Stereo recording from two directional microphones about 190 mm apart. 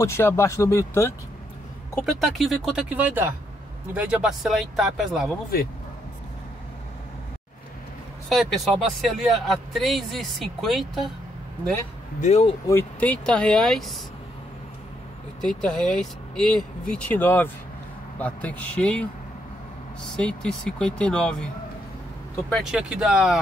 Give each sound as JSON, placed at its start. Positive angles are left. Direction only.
{"t": 0.0, "sound": "speech", "side_deg": 15}
{"t": 2.0, "sound": "speech", "side_deg": 0}
{"t": 9.0, "sound": "speech", "side_deg": 0}
{"t": 12.2, "sound": "speech", "side_deg": 35}
{"t": 12.6, "sound": "speech", "side_deg": 10}
{"t": 15.4, "sound": "speech", "side_deg": 5}
{"t": 22.5, "sound": "speech", "side_deg": 0}